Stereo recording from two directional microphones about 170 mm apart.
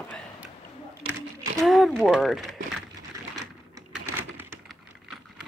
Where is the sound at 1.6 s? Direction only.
Centre (ahead or behind).